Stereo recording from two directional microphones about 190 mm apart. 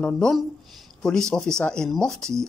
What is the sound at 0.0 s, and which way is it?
Speech, 5° left (ahead or behind).